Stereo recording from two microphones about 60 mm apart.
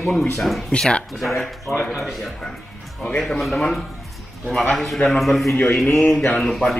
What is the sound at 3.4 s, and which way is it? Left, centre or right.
A man's voice, centre.